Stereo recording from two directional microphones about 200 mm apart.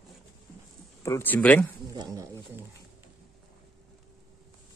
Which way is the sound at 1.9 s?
15° right (ahead or behind).